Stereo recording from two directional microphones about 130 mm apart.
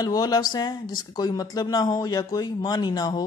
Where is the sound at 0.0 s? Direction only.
30° left (ahead or behind).